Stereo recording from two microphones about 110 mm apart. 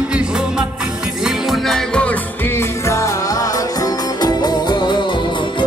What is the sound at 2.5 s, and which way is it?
Music, 25° left (ahead or behind).